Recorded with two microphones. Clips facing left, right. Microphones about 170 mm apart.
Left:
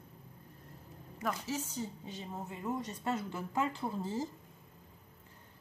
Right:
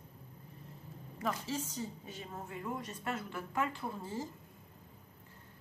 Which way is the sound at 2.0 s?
20° left (ahead or behind).